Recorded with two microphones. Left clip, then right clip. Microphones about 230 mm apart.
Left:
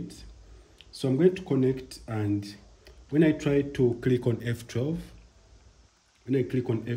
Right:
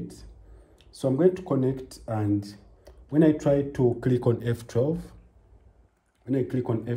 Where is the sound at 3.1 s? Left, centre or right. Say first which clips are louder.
Right 3 dB; centre.